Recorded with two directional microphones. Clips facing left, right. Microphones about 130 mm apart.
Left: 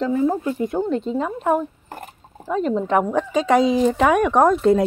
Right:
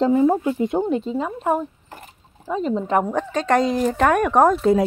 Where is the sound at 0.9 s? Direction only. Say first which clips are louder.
Left 1 dB; centre (ahead or behind).